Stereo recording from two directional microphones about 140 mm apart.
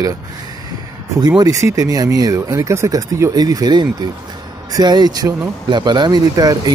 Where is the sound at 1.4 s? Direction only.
25° right (ahead or behind).